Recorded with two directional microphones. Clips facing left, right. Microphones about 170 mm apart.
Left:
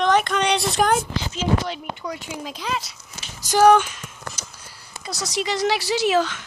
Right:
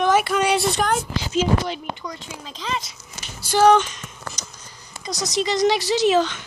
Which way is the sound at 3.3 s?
15° left (ahead or behind).